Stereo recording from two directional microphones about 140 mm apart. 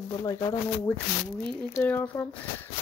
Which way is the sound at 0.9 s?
10° left (ahead or behind).